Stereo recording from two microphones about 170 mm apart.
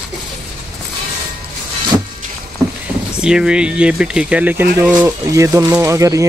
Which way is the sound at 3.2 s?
5° right (ahead or behind).